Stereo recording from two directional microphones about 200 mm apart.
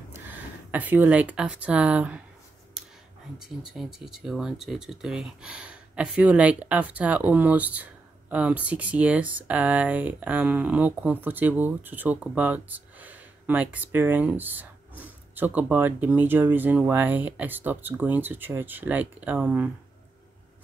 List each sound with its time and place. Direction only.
0.1 s speech: 10° right (ahead or behind)
3.4 s speech: centre (ahead or behind)